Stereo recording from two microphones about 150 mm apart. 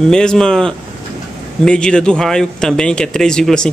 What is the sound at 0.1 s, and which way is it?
Speech, 5° left (ahead or behind).